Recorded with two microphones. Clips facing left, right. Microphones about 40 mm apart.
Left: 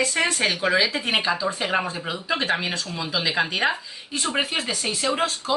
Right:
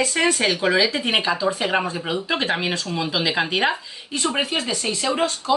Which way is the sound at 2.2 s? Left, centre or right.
Centre.